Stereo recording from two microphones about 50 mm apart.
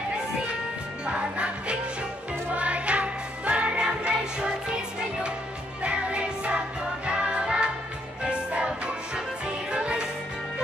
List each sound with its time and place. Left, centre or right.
1.0 s music: centre
5.8 s music: right